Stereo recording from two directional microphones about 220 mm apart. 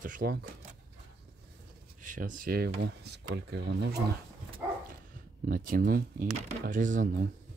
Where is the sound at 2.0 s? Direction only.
35° right (ahead or behind).